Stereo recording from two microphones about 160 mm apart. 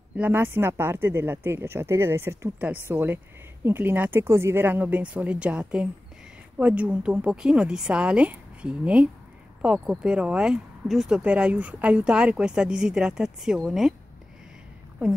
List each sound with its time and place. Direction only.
0.2 s speech: 15° right (ahead or behind)